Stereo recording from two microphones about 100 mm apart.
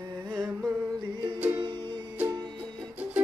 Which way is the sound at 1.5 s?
50° right (ahead or behind).